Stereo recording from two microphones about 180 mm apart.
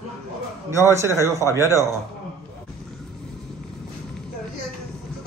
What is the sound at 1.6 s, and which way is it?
Speech, 15° left (ahead or behind).